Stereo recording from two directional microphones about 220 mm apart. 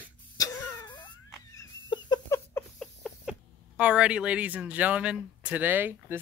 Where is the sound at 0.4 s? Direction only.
20° left (ahead or behind).